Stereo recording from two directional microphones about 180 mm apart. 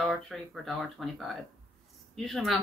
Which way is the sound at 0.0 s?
Centre (ahead or behind).